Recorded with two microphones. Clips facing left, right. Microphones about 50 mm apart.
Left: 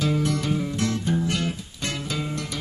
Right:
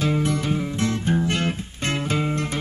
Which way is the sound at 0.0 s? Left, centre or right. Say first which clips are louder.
Right 1 dB; right.